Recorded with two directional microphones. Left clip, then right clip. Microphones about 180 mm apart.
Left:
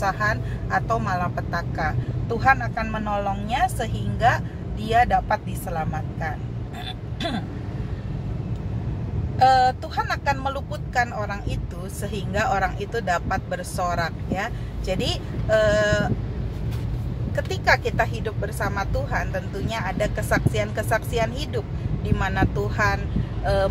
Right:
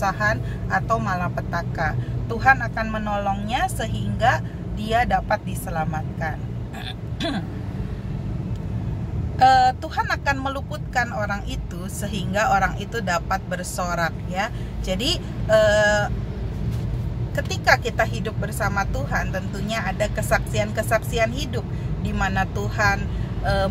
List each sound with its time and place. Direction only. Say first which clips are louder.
0.0 s speech: right 1 dB; 5° right (ahead or behind)
9.4 s speech: right 2 dB; 15° right (ahead or behind)
17.5 s speech: right 2 dB; 10° right (ahead or behind)